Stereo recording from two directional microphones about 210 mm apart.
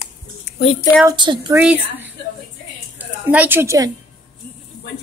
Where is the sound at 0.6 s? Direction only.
25° left (ahead or behind).